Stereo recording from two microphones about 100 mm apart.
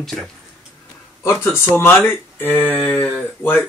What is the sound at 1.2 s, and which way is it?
Speech, 25° left (ahead or behind).